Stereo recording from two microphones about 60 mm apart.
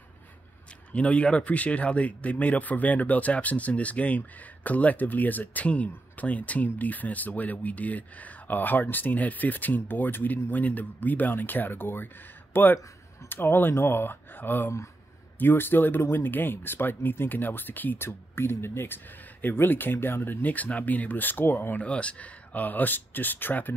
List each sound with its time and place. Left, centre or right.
0.9 s speech: left
21.7 s speech: centre